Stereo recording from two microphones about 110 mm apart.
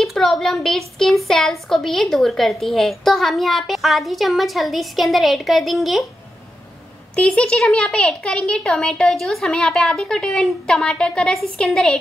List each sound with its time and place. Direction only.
0.0 s a child's voice: centre (ahead or behind)
7.2 s speech: 10° left (ahead or behind)